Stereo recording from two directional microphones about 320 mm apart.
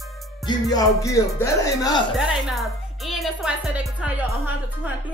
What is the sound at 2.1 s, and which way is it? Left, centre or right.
Speech, centre.